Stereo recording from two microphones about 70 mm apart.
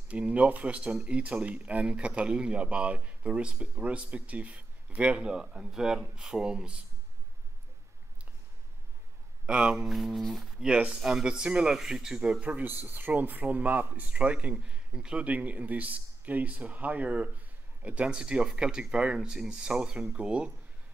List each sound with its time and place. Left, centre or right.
0.1 s speech: centre
9.5 s speech: centre